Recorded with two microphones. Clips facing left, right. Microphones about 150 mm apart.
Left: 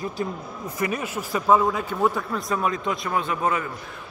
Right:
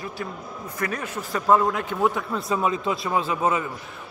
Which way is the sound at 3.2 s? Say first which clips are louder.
Right 1 dB; 25° right (ahead or behind).